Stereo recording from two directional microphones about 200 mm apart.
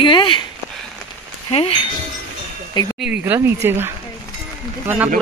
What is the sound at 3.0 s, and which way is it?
Speech, 10° right (ahead or behind).